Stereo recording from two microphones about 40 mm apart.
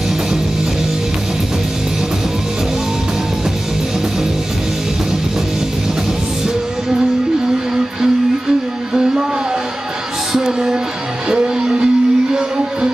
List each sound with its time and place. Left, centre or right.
7.7 s music: centre
10.3 s music: centre